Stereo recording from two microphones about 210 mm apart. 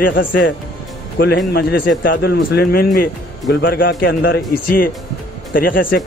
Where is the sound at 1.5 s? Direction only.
50° left (ahead or behind).